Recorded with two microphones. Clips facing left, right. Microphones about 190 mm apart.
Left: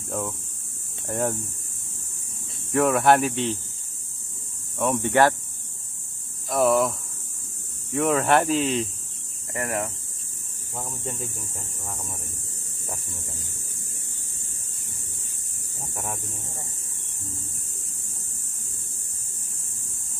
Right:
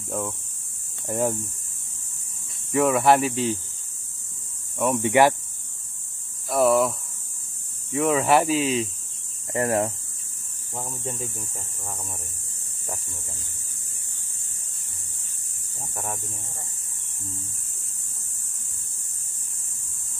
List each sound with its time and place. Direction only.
0.1 s speech: centre (ahead or behind)
2.7 s speech: centre (ahead or behind)
4.7 s speech: 5° right (ahead or behind)
6.5 s speech: centre (ahead or behind)
9.5 s speech: 30° right (ahead or behind)